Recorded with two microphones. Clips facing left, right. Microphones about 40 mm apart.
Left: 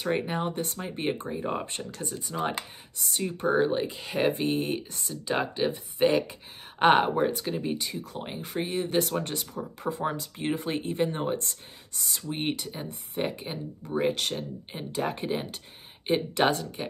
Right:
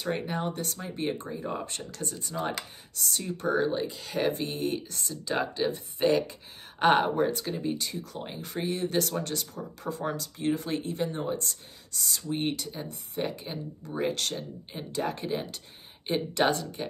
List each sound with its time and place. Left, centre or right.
0.0 s speech: left
7.8 s speech: centre
16.4 s speech: centre